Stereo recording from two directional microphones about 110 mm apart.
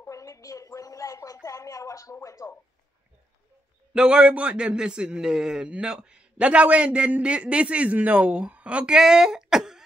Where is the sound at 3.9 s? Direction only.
10° right (ahead or behind).